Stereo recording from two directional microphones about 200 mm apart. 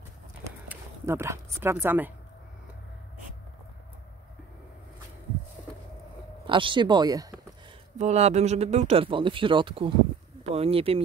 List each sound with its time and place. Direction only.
0.7 s speech: 10° right (ahead or behind)
6.4 s speech: 25° right (ahead or behind)
8.0 s speech: 35° right (ahead or behind)